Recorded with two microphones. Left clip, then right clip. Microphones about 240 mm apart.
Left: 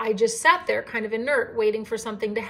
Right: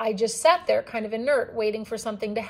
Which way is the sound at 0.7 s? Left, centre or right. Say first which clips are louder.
Left 1 dB; centre.